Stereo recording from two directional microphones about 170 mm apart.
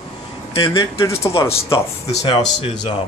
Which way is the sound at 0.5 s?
25° left (ahead or behind).